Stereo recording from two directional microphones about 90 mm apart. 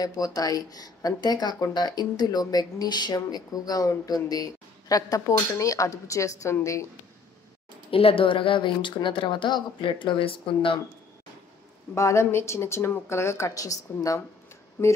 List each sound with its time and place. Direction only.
0.0 s a woman's voice: 45° left (ahead or behind)
7.9 s speech: 90° left
11.9 s speech: 30° left (ahead or behind)
14.8 s a sound: 30° left (ahead or behind)